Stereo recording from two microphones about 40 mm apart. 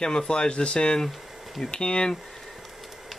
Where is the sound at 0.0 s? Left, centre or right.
Centre.